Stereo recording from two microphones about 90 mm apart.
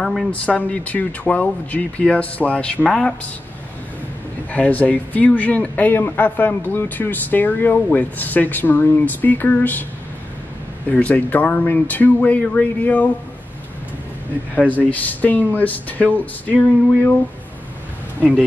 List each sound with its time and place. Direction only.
0.0 s speech: 5° left (ahead or behind)
0.3 s speech: 15° left (ahead or behind)
4.5 s speech: 15° left (ahead or behind)
10.9 s speech: 15° left (ahead or behind)
14.7 s speech: 20° left (ahead or behind)